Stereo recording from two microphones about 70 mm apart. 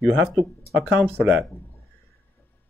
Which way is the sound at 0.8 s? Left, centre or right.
Centre.